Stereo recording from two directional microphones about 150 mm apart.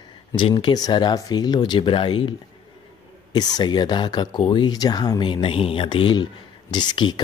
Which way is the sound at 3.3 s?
25° left (ahead or behind).